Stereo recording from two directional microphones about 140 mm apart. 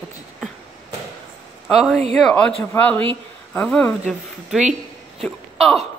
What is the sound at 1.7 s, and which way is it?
Speech, centre (ahead or behind).